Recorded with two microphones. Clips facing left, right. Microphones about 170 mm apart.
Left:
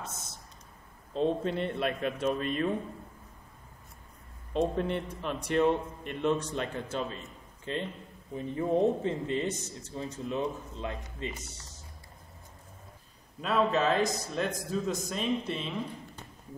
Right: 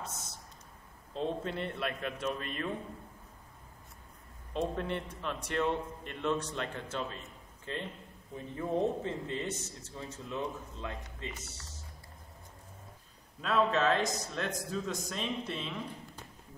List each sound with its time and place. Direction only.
1.1 s a man's voice: 20° left (ahead or behind)
4.6 s a man's voice: 15° left (ahead or behind)
13.4 s a man's voice: 5° left (ahead or behind)